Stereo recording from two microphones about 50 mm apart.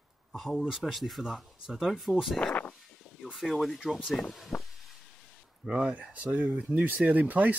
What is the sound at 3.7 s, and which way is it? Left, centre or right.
Speech, centre.